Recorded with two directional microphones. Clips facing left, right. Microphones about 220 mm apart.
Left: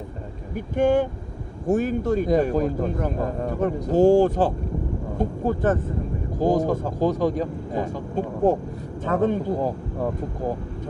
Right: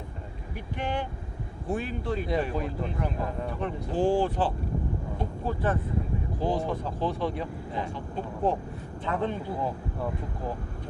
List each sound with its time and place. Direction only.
0.6 s a man's voice: 45° left (ahead or behind)